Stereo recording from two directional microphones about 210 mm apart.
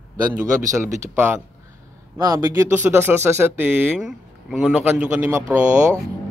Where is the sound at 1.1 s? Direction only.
10° right (ahead or behind).